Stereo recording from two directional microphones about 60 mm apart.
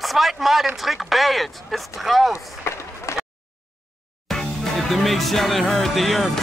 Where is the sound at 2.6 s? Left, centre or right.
Left.